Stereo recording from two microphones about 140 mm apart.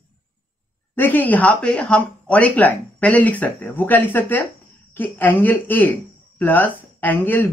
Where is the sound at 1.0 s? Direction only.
15° left (ahead or behind).